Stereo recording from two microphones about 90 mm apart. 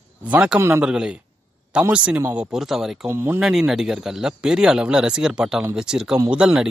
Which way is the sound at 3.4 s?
5° right (ahead or behind).